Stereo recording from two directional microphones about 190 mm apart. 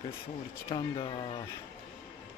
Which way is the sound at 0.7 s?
30° left (ahead or behind).